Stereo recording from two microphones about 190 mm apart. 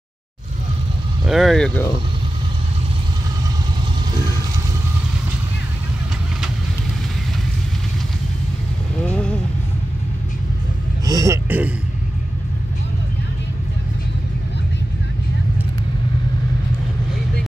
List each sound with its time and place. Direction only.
1.2 s speech: centre (ahead or behind)
9.0 s vehicle: 5° left (ahead or behind)
11.1 s music: 15° right (ahead or behind)